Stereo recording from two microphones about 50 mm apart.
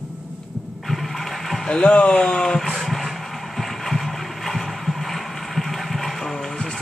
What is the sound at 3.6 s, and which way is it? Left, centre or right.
Boat, centre.